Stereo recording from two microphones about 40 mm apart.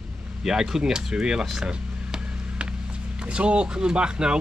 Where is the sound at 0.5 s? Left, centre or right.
Centre.